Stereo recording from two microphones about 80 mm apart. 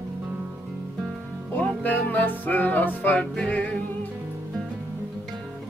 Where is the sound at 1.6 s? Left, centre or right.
Left.